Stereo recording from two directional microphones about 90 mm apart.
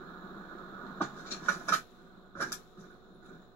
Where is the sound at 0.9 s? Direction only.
25° left (ahead or behind).